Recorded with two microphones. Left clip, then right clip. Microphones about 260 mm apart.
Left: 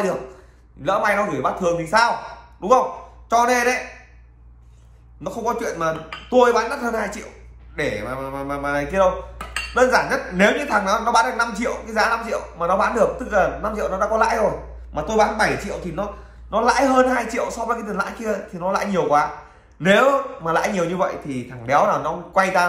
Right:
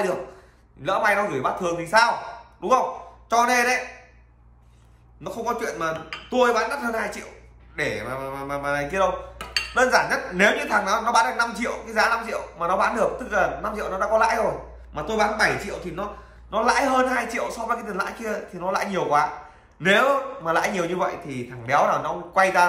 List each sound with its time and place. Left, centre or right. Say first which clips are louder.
0.8 s a woman's voice: left 2 dB; centre
5.2 s a woman's voice: left 3 dB; centre